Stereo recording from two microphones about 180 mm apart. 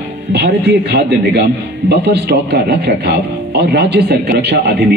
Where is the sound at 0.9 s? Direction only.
65° right (ahead or behind).